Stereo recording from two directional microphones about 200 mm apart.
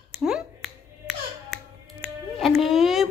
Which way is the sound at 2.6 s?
Centre (ahead or behind).